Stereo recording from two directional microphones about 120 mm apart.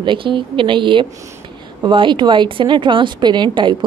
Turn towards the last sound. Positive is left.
turn(degrees=-40)  # may be behind; listen again after turning